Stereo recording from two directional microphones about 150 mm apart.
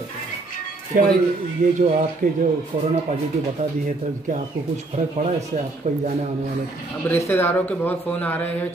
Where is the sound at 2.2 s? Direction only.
60° right (ahead or behind).